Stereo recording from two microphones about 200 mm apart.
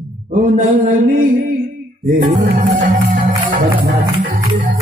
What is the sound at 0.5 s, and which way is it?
A man's voice, 45° right (ahead or behind).